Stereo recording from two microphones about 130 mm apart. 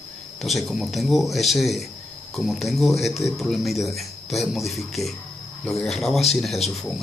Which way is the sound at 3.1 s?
20° left (ahead or behind).